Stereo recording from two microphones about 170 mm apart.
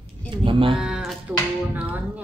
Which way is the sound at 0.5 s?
30° right (ahead or behind).